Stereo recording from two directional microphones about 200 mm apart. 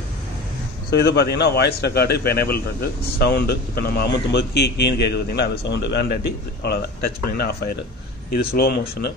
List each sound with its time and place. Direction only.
0.8 s a man's voice: 55° left (ahead or behind)